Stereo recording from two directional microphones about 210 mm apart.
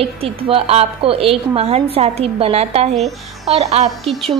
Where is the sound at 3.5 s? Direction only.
30° right (ahead or behind).